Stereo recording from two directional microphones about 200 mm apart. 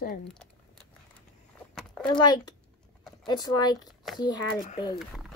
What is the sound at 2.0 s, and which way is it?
Speech, 20° left (ahead or behind).